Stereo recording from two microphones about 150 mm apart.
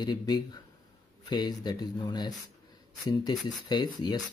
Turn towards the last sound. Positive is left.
turn(degrees=30)  # may be behind; listen again after turning